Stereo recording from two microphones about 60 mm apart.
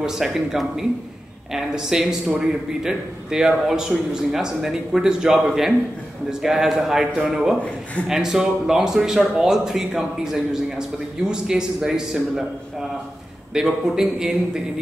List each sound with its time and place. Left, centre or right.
0.0 s speech: centre
13.5 s speech: centre